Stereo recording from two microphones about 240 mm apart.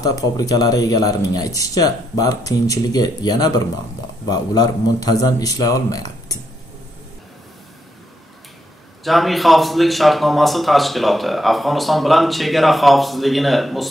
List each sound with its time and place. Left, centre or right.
0.0 s speech: centre
9.0 s a man's voice: centre